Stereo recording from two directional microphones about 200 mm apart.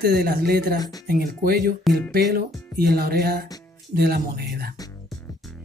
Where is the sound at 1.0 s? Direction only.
50° right (ahead or behind).